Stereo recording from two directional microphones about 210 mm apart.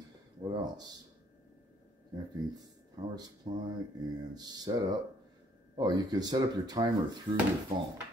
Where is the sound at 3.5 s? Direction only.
25° right (ahead or behind).